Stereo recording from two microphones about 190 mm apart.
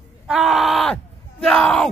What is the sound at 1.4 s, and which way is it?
Speech, 5° left (ahead or behind).